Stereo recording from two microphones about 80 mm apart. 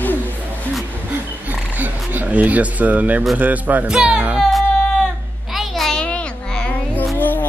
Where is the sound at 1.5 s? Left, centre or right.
Right.